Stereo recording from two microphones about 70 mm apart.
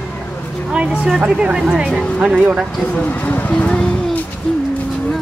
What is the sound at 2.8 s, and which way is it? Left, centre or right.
Speech, centre.